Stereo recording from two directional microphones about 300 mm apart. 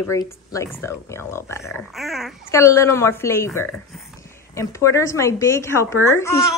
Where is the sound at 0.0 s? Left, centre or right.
Centre.